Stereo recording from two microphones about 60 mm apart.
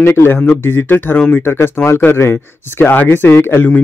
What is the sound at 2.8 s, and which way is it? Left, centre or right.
Speech, left.